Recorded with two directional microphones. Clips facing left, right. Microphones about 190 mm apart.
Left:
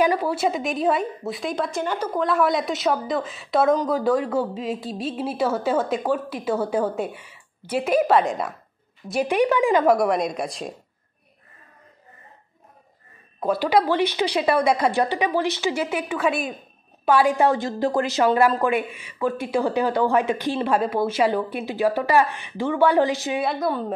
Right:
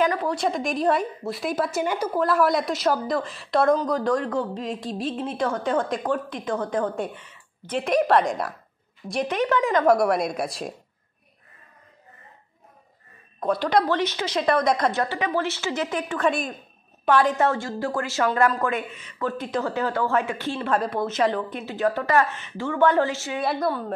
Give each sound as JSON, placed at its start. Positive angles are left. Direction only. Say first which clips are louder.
{"t": 0.0, "sound": "a woman's voice", "louder": "left 2 dB", "side_deg": 10}
{"t": 9.8, "sound": "a woman's voice", "louder": "even", "side_deg": 0}
{"t": 13.4, "sound": "speech", "louder": "left 2 dB", "side_deg": 5}
{"t": 23.4, "sound": "a woman's voice", "louder": "right 3 dB", "side_deg": 0}